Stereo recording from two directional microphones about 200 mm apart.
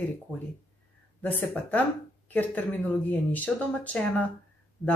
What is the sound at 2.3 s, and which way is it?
A woman's voice, 10° left (ahead or behind).